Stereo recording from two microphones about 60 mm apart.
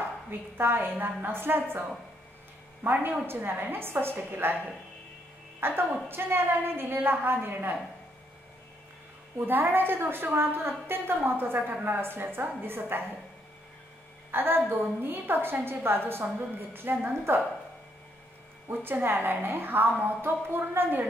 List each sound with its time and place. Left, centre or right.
0.3 s a woman's voice: right
5.6 s a woman's voice: right
9.5 s a woman's voice: right
14.3 s a woman's voice: right
18.7 s a woman's voice: right